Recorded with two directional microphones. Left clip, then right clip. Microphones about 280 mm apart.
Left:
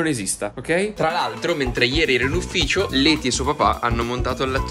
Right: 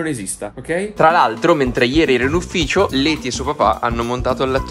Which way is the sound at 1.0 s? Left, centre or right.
Right.